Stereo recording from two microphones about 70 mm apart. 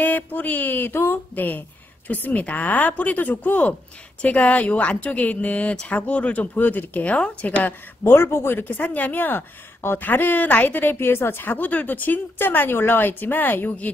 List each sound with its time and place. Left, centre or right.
0.0 s a woman's voice: left